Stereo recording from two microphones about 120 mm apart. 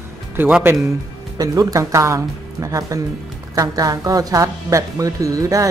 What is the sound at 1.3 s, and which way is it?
Speech, 30° right (ahead or behind).